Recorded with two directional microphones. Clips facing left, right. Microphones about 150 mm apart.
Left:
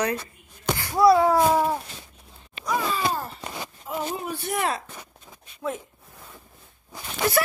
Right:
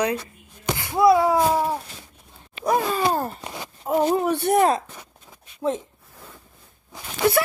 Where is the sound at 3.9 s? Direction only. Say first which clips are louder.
Right 10 dB; 60° right (ahead or behind).